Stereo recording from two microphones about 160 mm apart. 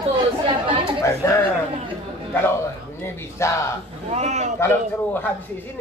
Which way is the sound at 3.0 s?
15° left (ahead or behind).